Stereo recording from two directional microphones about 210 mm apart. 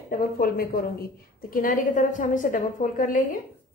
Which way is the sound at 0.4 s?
45° left (ahead or behind).